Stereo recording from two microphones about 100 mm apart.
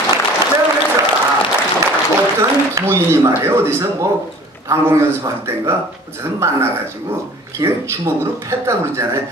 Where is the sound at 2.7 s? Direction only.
30° right (ahead or behind).